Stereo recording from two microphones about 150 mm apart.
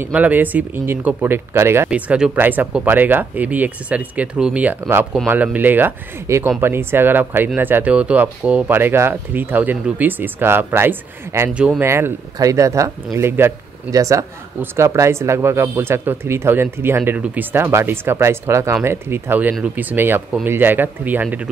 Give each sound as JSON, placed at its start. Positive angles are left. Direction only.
{"t": 0.0, "sound": "speech", "side_deg": -10}
{"t": 11.8, "sound": "speech", "side_deg": -15}